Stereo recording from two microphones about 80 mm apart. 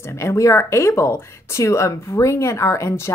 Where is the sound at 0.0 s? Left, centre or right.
Left.